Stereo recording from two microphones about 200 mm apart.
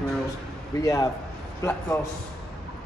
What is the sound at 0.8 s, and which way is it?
A man's voice, 15° left (ahead or behind).